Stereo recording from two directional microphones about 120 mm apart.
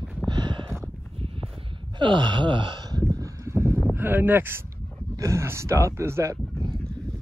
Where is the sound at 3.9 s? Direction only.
15° right (ahead or behind).